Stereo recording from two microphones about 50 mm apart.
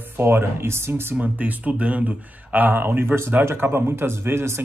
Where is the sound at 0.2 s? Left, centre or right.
Right.